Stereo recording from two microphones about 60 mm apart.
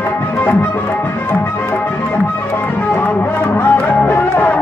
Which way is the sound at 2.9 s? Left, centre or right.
Left.